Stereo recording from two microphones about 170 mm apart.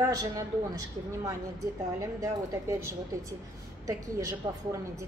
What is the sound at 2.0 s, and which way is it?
A woman's voice, 20° right (ahead or behind).